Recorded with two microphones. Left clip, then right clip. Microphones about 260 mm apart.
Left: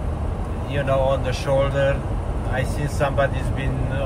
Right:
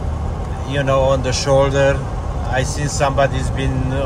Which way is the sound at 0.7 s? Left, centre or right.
Right.